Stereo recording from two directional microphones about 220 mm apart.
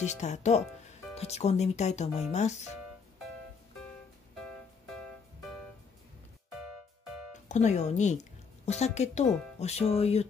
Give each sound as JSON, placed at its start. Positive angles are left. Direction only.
{"t": 0.0, "sound": "speech", "side_deg": 30}
{"t": 7.4, "sound": "a woman's voice", "side_deg": 30}